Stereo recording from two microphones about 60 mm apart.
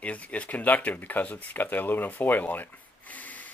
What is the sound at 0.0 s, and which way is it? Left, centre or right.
Speech, left.